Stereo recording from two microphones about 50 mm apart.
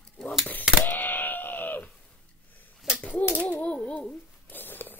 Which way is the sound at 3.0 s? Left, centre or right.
Left.